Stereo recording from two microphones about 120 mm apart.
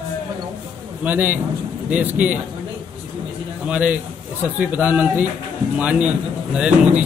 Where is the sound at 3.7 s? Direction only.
10° right (ahead or behind).